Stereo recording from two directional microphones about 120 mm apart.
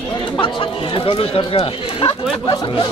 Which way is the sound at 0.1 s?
45° left (ahead or behind).